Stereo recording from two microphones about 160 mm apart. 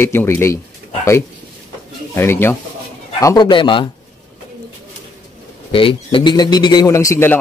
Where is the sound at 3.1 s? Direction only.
25° left (ahead or behind).